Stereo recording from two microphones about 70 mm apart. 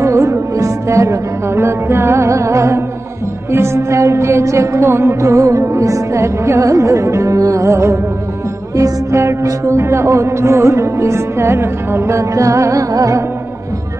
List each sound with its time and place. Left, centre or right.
0.0 s music: right